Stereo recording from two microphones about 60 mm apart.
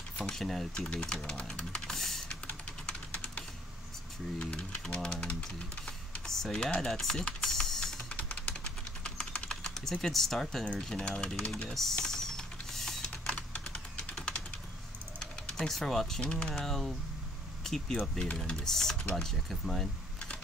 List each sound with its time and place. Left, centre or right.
0.2 s speech: centre
4.4 s speech: centre
6.2 s speech: centre
8.1 s typing: left
10.0 s speech: centre
11.7 s typing: centre
16.2 s speech: centre